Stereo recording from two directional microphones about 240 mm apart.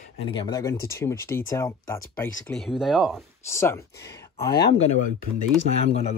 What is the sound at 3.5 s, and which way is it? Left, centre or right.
Speech, centre.